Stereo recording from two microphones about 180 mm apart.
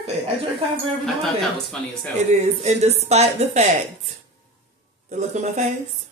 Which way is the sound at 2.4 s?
40° right (ahead or behind).